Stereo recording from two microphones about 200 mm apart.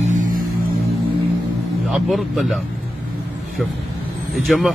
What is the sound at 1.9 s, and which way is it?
Speech, centre (ahead or behind).